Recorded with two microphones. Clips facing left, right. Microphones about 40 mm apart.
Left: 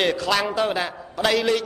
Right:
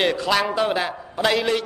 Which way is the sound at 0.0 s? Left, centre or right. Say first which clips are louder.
Right 1 dB; centre.